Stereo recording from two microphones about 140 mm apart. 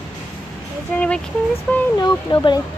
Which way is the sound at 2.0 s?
30° left (ahead or behind).